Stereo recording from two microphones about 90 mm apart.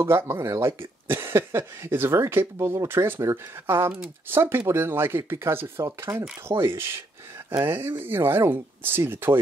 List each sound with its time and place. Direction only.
0.0 s speech: 30° right (ahead or behind)
6.5 s speech: 55° right (ahead or behind)
7.6 s speech: 25° right (ahead or behind)